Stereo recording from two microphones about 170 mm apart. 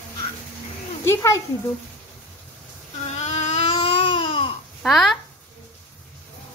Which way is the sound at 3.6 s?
30° left (ahead or behind).